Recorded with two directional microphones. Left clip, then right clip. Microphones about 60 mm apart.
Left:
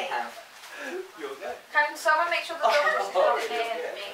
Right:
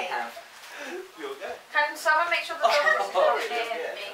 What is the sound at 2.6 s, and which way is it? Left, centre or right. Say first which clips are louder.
Speech: right 1 dB; right.